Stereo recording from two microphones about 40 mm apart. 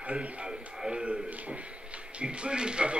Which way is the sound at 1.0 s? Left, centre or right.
Right.